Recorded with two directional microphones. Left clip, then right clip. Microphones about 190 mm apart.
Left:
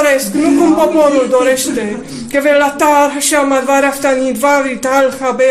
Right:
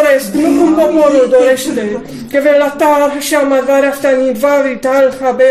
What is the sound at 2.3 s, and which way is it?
Speech, centre (ahead or behind).